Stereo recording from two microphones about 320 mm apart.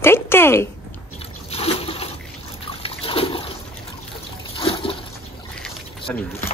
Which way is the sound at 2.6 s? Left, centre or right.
Centre.